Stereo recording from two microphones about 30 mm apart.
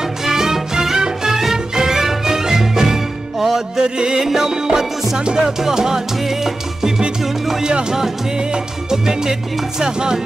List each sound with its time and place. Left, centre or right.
0.2 s music: centre
3.3 s music: centre
3.7 s music: right
4.2 s music: centre
5.4 s music: centre
8.9 s music: centre